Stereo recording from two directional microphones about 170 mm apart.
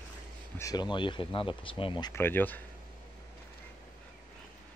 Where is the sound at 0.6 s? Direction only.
20° left (ahead or behind).